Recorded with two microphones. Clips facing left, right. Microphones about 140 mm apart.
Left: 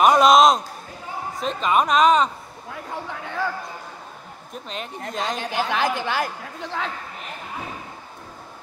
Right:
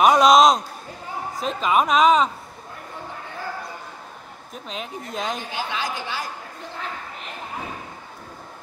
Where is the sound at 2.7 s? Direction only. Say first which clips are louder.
Left 5 dB; 90° left.